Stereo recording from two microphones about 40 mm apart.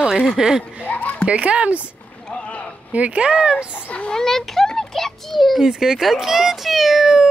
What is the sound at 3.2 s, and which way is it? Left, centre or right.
Speech, right.